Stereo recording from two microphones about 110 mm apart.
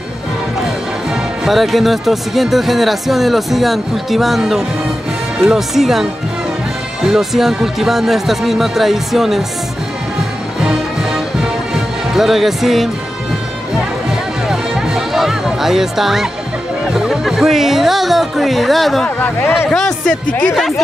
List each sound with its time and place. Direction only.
1.1 s speech: centre (ahead or behind)
7.1 s speech: 5° right (ahead or behind)
10.6 s music: 5° right (ahead or behind)
14.5 s music: 5° right (ahead or behind)
16.8 s speech: 5° right (ahead or behind)
19.0 s speech: 15° left (ahead or behind); by 20.8 s centre (ahead or behind)